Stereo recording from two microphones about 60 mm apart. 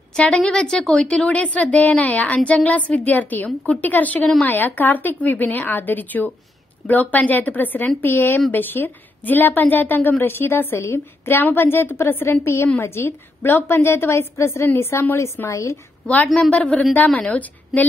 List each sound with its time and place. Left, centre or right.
0.4 s a woman's voice: centre; by 12.3 s left
12.3 s a woman's voice: left
14.7 s a woman's voice: left
15.5 s a woman's voice: left
16.3 s a woman's voice: left